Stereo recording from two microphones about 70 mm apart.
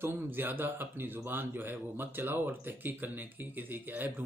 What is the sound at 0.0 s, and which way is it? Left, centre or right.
Speech, right.